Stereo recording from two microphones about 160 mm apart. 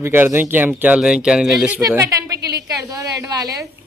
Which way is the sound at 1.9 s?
20° right (ahead or behind).